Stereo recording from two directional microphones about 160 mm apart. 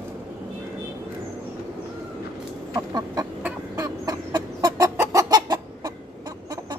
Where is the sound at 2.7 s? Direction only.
20° right (ahead or behind).